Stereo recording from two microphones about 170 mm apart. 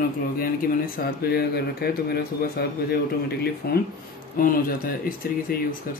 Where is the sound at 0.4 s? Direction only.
55° left (ahead or behind).